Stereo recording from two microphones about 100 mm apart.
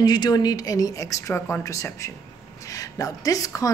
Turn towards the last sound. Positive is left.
turn(degrees=35)  # may be behind; listen again after turning